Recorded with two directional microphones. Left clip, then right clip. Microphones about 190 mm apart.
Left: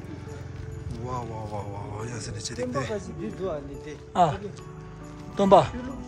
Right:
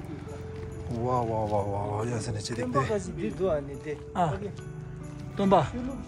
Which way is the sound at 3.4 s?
50° right (ahead or behind).